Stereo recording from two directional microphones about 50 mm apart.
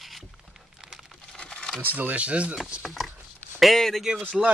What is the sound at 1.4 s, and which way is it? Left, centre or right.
Crumpling, centre.